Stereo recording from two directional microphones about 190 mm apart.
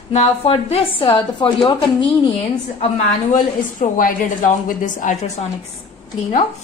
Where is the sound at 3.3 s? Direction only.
45° left (ahead or behind).